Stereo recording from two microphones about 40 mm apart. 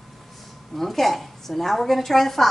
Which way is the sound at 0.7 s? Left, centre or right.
Centre.